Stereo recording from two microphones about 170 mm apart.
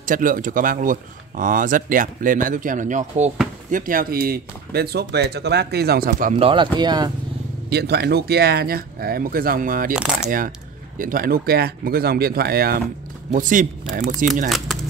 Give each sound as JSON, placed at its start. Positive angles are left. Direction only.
{"t": 0.0, "sound": "speech", "side_deg": -55}
{"t": 6.3, "sound": "speech", "side_deg": -30}
{"t": 7.7, "sound": "speech", "side_deg": -70}
{"t": 9.9, "sound": "speech", "side_deg": -5}
{"t": 11.0, "sound": "speech", "side_deg": -55}
{"t": 13.3, "sound": "speech", "side_deg": -50}